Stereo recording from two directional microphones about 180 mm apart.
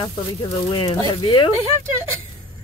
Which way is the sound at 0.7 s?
30° left (ahead or behind).